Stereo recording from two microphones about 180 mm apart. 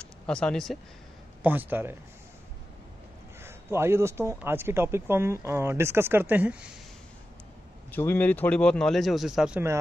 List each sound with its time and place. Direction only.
0.0 s speech: 5° left (ahead or behind)
1.4 s speech: 10° right (ahead or behind)
3.4 s speech: 15° right (ahead or behind)
7.9 s speech: 10° left (ahead or behind); by 9.8 s 10° right (ahead or behind)